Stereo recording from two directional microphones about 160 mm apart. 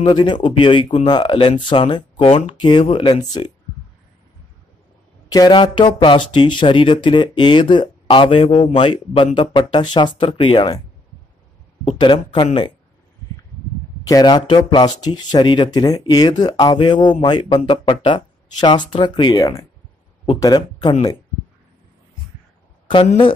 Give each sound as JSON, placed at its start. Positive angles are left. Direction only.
{"t": 0.0, "sound": "speech", "side_deg": 30}
{"t": 5.3, "sound": "speech", "side_deg": 25}
{"t": 11.8, "sound": "speech", "side_deg": 30}
{"t": 14.0, "sound": "speech", "side_deg": 25}
{"t": 22.8, "sound": "speech", "side_deg": 35}